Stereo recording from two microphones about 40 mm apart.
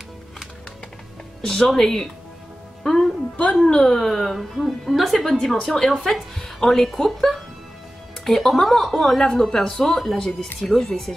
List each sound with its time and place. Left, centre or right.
1.4 s a woman's voice: centre
2.8 s music: centre
3.9 s a woman's voice: centre
9.0 s a woman's voice: centre